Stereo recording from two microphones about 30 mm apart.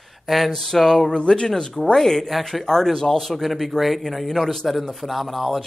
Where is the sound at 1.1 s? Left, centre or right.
Left.